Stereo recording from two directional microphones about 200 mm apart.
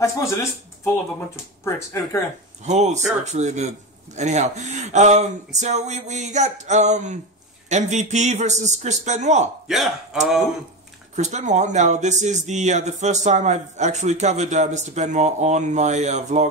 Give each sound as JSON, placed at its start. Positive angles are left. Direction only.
{"t": 0.0, "sound": "speech", "side_deg": 15}
{"t": 2.6, "sound": "speech", "side_deg": -35}
{"t": 9.7, "sound": "speech", "side_deg": 0}
{"t": 11.1, "sound": "speech", "side_deg": -35}